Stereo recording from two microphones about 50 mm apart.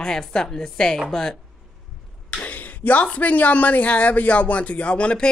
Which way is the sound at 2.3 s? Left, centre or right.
Left.